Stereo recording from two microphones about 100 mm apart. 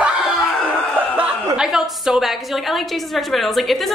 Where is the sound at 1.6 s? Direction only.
5° right (ahead or behind).